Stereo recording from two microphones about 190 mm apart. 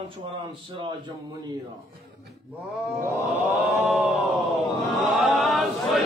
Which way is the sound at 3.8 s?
5° right (ahead or behind).